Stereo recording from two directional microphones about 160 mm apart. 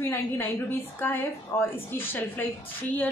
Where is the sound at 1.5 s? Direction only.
15° left (ahead or behind).